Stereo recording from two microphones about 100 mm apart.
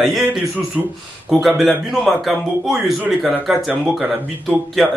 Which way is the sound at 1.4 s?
Centre (ahead or behind).